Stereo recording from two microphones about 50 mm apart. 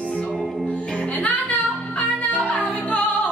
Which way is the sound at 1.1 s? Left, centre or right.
Left.